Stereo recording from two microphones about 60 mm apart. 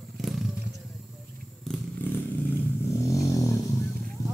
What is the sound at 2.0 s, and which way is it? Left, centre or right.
Vehicle, left.